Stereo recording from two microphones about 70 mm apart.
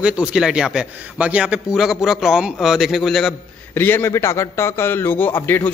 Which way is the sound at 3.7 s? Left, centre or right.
Left.